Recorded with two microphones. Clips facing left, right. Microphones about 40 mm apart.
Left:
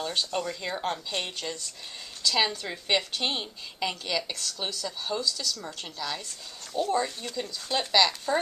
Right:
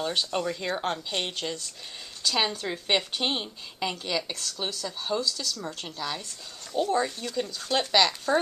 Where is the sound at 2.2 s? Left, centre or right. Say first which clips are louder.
Left 1 dB; right.